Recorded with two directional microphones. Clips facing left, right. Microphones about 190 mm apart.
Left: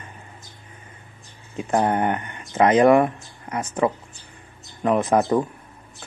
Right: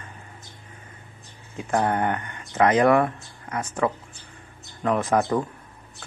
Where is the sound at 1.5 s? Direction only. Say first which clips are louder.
Left 2 dB; 20° left (ahead or behind).